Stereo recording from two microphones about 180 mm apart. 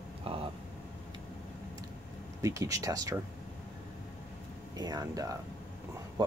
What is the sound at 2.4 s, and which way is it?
Speech, 15° right (ahead or behind).